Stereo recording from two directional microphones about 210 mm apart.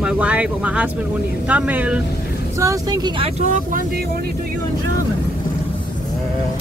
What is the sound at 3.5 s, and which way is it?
Speech, 40° right (ahead or behind).